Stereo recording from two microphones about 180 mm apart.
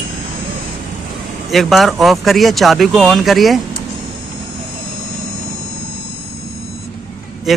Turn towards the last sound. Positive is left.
turn(degrees=0)  # may be behind; listen again after turning